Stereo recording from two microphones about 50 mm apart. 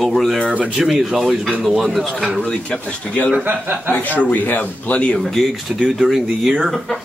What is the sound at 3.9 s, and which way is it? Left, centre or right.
Speech, left.